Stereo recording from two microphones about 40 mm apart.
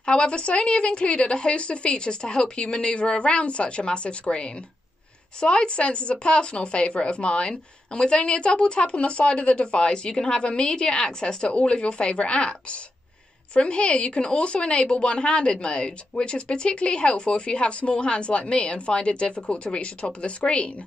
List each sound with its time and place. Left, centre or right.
0.0 s speech: left
13.6 s speech: left